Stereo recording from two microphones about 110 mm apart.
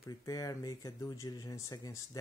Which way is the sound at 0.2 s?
30° left (ahead or behind).